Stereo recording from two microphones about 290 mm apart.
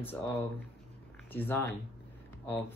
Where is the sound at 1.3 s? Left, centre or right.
Centre.